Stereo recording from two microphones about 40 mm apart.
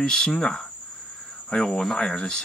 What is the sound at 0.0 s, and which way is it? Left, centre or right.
Speech, centre.